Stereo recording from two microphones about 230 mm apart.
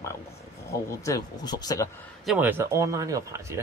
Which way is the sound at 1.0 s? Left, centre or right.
Centre.